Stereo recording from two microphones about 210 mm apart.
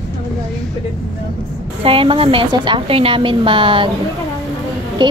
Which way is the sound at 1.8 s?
25° right (ahead or behind).